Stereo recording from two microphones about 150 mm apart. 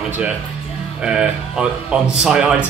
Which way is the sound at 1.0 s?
5° right (ahead or behind).